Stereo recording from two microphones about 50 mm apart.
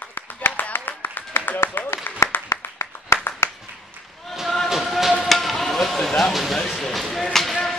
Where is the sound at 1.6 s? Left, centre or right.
Left.